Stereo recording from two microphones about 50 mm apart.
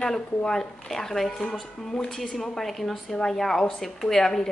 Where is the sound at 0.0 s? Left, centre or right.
Centre.